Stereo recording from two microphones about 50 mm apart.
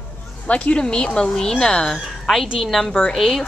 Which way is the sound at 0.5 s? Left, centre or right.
Left.